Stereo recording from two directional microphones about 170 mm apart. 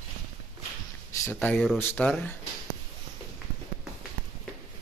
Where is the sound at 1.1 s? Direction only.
15° left (ahead or behind).